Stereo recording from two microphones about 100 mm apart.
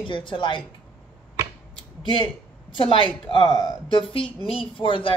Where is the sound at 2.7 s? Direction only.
60° left (ahead or behind).